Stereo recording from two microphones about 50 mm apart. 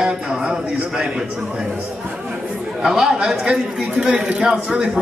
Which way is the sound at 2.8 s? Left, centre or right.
Centre.